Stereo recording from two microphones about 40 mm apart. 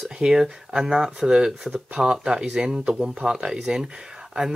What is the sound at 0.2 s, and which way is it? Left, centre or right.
Speech, centre.